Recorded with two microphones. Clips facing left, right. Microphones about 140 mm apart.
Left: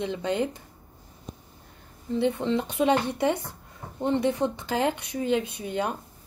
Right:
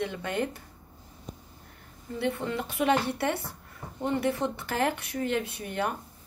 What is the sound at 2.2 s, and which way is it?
A woman's voice, 25° left (ahead or behind).